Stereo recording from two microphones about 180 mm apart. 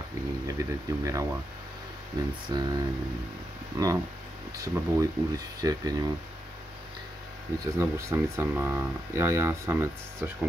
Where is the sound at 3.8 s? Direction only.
20° right (ahead or behind).